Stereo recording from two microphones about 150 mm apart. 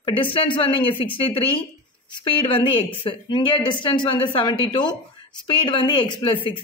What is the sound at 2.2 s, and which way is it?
Speech, 35° left (ahead or behind).